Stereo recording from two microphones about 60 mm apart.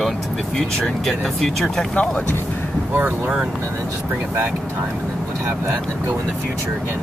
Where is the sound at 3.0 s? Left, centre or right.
Right.